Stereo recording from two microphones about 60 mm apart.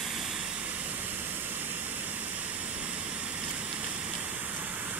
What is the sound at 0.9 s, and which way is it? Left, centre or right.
Vehicle, right.